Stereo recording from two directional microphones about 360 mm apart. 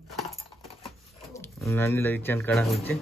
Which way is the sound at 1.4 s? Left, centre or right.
Centre.